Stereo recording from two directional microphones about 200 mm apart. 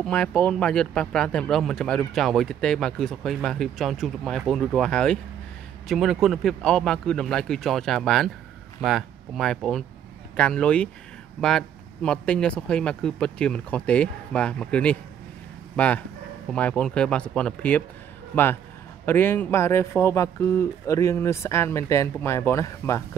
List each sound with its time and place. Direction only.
0.0 s a man's voice: 5° left (ahead or behind)